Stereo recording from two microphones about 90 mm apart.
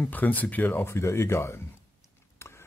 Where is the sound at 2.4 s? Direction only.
30° left (ahead or behind).